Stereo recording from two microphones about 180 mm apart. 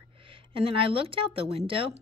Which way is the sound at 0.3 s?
30° right (ahead or behind).